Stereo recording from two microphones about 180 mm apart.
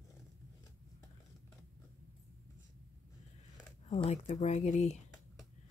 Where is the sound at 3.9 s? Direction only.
35° left (ahead or behind).